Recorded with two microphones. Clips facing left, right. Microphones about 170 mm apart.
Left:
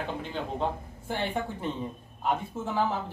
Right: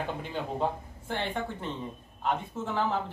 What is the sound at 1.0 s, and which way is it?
Speech, 10° left (ahead or behind).